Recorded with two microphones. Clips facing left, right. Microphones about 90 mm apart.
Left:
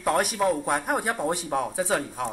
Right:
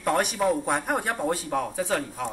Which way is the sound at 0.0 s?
5° left (ahead or behind).